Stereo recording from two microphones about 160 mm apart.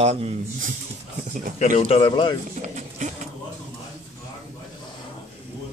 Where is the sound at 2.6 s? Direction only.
45° right (ahead or behind).